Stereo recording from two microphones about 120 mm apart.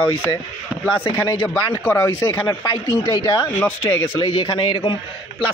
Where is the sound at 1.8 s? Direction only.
20° left (ahead or behind).